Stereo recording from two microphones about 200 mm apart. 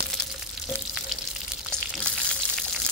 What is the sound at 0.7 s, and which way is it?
Frying, 10° left (ahead or behind).